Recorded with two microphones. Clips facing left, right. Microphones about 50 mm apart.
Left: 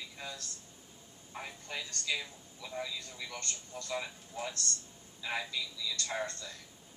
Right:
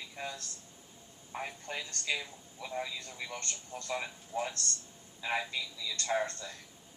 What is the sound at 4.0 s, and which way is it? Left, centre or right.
A man's voice, right.